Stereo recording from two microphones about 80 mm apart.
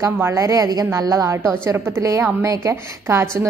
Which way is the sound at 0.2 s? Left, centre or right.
Right.